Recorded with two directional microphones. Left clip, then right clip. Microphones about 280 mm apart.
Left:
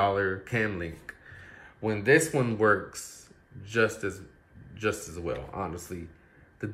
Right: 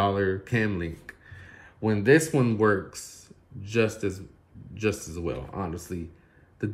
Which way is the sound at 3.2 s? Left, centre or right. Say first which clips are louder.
Right 3 dB; right.